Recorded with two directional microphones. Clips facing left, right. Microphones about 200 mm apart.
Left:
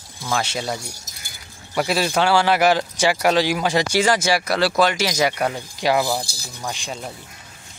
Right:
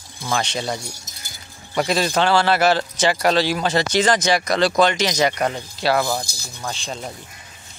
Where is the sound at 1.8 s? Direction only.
10° left (ahead or behind).